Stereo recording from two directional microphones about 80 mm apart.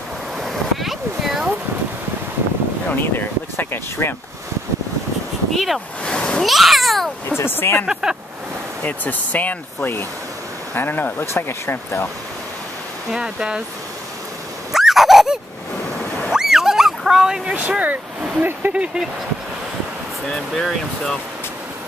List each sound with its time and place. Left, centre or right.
0.4 s a sound: centre
2.9 s speech: left
5.5 s speech: centre
6.4 s speech: centre
7.2 s speech: left
7.8 s speech: centre
8.8 s speech: centre
13.1 s speech: centre
14.7 s dog: centre
17.6 s speech: centre
20.2 s speech: centre